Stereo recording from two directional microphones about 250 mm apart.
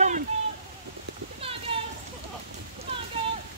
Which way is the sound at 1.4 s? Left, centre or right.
Right.